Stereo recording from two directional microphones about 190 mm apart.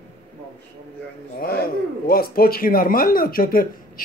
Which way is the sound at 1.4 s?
50° left (ahead or behind).